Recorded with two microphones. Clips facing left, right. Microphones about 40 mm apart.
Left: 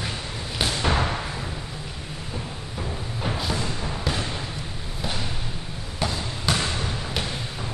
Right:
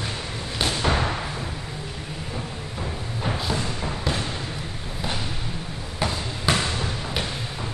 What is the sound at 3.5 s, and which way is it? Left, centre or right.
Thump, centre.